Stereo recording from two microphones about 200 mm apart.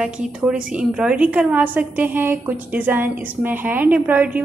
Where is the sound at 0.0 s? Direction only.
5° right (ahead or behind).